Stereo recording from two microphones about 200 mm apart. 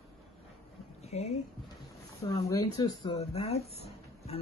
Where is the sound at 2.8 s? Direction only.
30° left (ahead or behind).